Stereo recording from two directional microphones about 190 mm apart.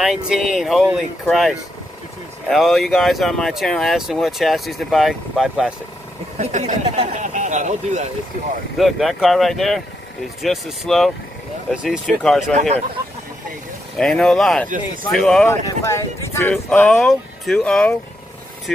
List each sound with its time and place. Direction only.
0.0 s speech: centre (ahead or behind)
6.4 s speech: 35° right (ahead or behind)
8.7 s speech: centre (ahead or behind)
12.5 s speech: 35° right (ahead or behind)
13.9 s speech: 5° left (ahead or behind)
15.6 s speech: 15° left (ahead or behind)